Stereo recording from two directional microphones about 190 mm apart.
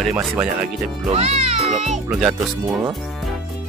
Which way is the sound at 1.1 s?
35° right (ahead or behind).